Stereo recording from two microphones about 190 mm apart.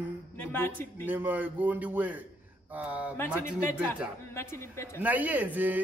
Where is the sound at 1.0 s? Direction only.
10° right (ahead or behind).